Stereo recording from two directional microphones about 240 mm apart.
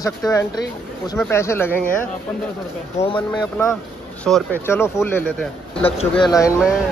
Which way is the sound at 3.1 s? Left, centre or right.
Centre.